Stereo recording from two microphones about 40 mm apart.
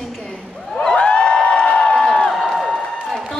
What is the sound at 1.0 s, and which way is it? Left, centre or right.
Music, left.